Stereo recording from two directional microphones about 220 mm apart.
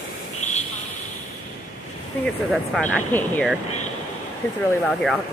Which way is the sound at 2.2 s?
Centre (ahead or behind).